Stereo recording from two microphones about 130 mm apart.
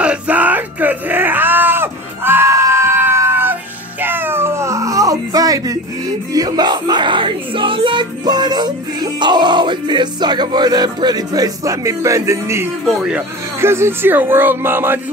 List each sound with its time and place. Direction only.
0.0 s music: 10° right (ahead or behind)
4.0 s baby cry: 15° right (ahead or behind)
6.3 s music: 30° right (ahead or behind)
12.8 s speech: 5° right (ahead or behind)
13.6 s speech: 20° right (ahead or behind)